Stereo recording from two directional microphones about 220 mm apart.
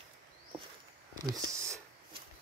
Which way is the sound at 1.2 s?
15° right (ahead or behind).